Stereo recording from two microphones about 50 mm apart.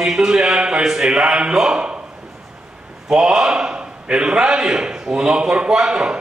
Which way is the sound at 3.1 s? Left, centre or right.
Centre.